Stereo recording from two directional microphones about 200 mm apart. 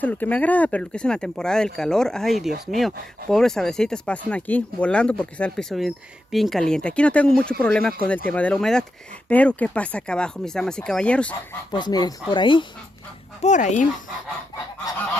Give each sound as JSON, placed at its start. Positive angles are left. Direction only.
{"t": 0.0, "sound": "speech", "side_deg": 10}
{"t": 11.7, "sound": "speech", "side_deg": 20}
{"t": 13.4, "sound": "speech", "side_deg": 35}